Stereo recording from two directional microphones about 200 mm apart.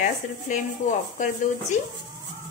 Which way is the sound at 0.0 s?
40° left (ahead or behind).